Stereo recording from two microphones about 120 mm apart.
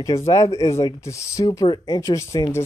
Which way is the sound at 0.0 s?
25° left (ahead or behind).